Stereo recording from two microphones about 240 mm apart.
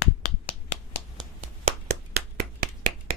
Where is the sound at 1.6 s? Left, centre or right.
Right.